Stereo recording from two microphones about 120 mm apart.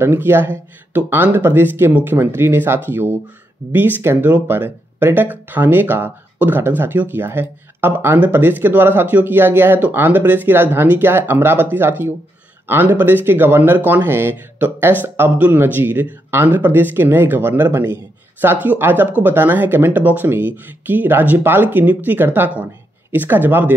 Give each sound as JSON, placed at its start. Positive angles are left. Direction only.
{"t": 0.0, "sound": "speech", "side_deg": -20}